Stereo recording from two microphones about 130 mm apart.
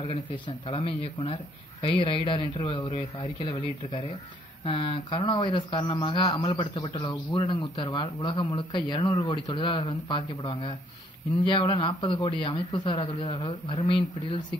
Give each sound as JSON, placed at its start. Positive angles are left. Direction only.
{"t": 0.0, "sound": "a man's voice", "side_deg": 45}
{"t": 2.9, "sound": "speech", "side_deg": 55}
{"t": 3.4, "sound": "a man's voice", "side_deg": 40}